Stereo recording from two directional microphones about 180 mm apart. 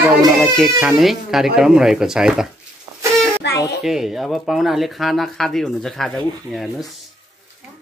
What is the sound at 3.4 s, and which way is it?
Music, 70° left (ahead or behind).